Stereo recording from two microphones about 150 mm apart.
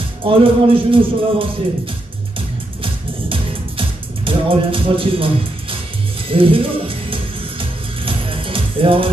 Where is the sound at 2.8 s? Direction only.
35° right (ahead or behind).